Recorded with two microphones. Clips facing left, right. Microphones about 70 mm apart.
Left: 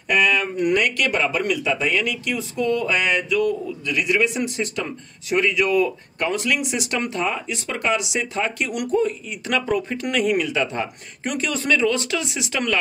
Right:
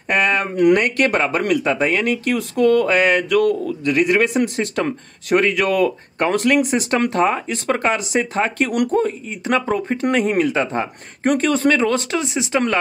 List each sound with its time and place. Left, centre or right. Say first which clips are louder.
0.1 s speech: right 1 dB; right
3.9 s speech: right 5 dB; right
9.3 s speech: right 3 dB; right
12.2 s speech: right 6 dB; right